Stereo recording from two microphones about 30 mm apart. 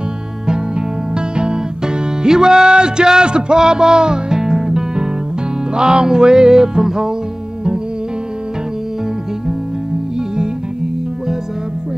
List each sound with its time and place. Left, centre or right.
0.5 s music: right
5.8 s music: right
10.1 s music: right